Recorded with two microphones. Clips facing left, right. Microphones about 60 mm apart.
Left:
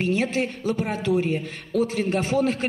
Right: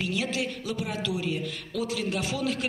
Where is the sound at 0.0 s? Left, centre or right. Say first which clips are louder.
Left 6 dB; left.